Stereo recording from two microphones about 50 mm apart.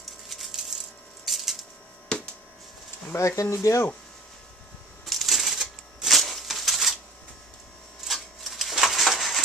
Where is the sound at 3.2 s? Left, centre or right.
Left.